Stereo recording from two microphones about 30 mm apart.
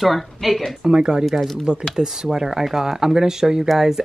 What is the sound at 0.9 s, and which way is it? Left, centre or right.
Speech, right.